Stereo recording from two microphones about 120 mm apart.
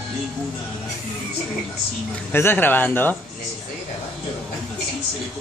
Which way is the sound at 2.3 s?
20° left (ahead or behind).